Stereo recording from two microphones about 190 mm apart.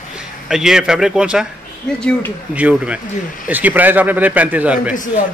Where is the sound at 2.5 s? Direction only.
5° right (ahead or behind).